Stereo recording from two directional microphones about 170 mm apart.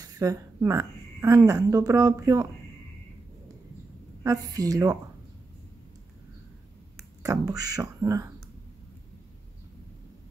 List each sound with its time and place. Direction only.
0.0 s a woman's voice: 20° right (ahead or behind)
4.2 s speech: 20° right (ahead or behind)
7.2 s speech: 20° right (ahead or behind)